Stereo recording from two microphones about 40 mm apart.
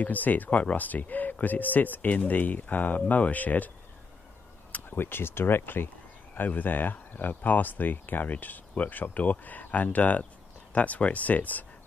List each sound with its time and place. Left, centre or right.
0.0 s speech: left
4.8 s speech: left
5.6 s speech: left